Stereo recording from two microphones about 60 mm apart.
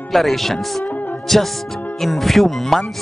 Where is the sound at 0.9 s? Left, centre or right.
Left.